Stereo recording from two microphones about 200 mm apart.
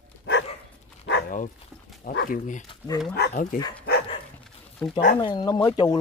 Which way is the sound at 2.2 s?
40° left (ahead or behind).